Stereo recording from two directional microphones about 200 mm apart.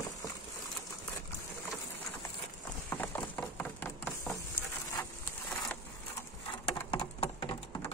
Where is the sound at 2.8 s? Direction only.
10° left (ahead or behind).